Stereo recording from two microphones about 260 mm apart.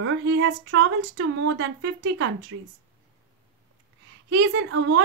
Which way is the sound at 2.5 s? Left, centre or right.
Right.